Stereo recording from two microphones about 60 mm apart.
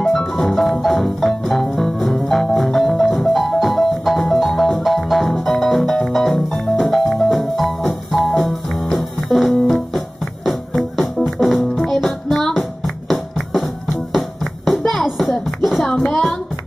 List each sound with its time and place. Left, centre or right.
0.4 s music: centre
15.0 s a sound: centre
16.0 s music: centre